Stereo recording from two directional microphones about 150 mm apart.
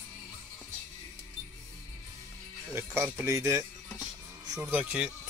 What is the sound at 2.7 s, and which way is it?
Speech, 15° right (ahead or behind).